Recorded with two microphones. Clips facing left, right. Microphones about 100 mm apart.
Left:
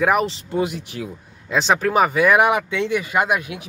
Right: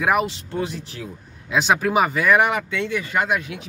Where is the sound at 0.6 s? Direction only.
10° left (ahead or behind).